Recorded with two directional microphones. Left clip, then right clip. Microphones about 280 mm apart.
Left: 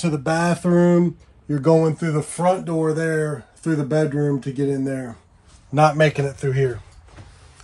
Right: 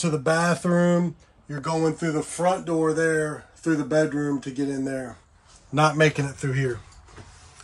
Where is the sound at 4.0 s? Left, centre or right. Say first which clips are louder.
Left 2 dB; left.